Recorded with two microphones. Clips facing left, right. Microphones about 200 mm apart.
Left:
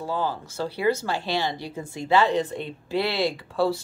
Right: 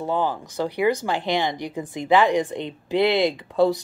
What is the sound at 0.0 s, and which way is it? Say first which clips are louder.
Speech: right 4 dB; 20° right (ahead or behind).